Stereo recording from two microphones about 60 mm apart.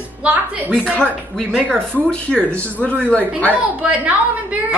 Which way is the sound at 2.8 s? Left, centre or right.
Left.